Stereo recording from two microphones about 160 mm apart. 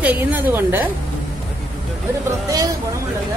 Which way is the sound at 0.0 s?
10° right (ahead or behind).